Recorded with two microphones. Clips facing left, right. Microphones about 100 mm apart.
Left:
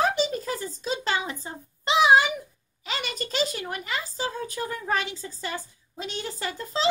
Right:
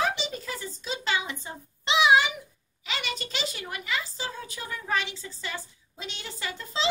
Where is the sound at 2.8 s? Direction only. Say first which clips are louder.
Left 2 dB; 40° left (ahead or behind).